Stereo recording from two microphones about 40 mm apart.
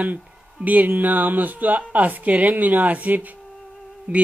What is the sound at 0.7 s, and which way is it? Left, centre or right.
A woman's voice, right.